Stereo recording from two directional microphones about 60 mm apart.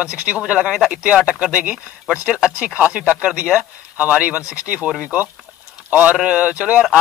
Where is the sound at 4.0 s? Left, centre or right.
Right.